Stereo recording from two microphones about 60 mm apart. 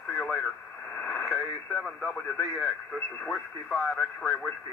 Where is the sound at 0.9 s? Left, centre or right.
Centre.